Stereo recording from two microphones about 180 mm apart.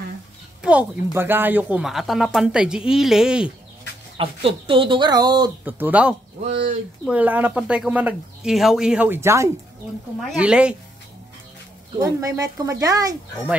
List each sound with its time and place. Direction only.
0.6 s speech: 5° right (ahead or behind)
4.2 s speech: 30° right (ahead or behind)
5.7 s speech: 10° right (ahead or behind)
12.0 s speech: 20° right (ahead or behind)